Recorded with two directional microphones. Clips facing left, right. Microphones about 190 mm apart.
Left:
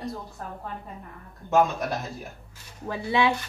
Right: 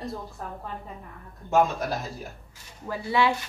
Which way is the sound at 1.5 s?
Centre (ahead or behind).